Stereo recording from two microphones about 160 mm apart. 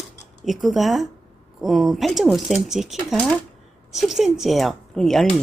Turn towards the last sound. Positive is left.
turn(degrees=0)  # may be behind; listen again after turning